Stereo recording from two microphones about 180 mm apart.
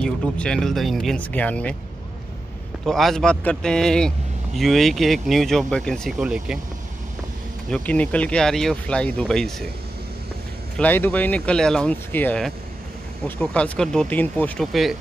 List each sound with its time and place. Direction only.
0.0 s speech: 5° left (ahead or behind)
2.8 s speech: centre (ahead or behind)
7.7 s speech: 5° left (ahead or behind)
10.8 s speech: 10° left (ahead or behind)